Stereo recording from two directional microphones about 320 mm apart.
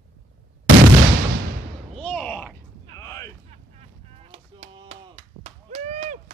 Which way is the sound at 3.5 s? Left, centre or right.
Centre.